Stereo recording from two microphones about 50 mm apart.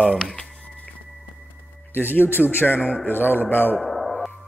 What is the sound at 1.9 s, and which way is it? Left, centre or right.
A man's voice, left.